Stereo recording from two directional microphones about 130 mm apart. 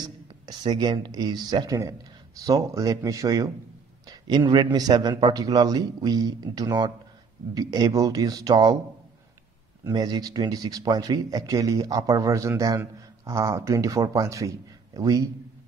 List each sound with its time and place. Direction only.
0.5 s a man's voice: 35° right (ahead or behind)
9.8 s speech: 35° right (ahead or behind)